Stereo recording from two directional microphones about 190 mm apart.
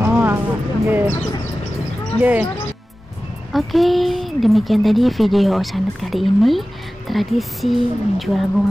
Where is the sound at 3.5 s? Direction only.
Centre (ahead or behind).